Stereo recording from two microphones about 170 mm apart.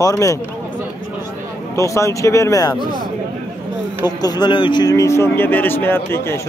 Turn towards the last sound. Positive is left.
turn(degrees=15)  # may be behind; listen again after turning